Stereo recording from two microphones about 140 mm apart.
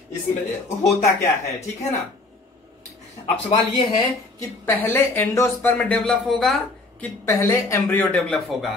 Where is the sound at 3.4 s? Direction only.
35° left (ahead or behind).